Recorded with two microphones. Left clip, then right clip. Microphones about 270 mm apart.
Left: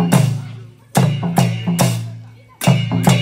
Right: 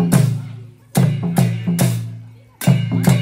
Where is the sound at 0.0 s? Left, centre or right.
Left.